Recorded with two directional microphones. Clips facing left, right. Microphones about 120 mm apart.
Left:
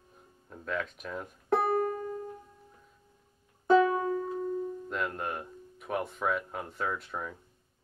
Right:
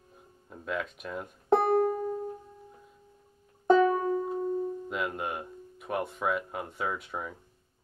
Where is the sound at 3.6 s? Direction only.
30° right (ahead or behind).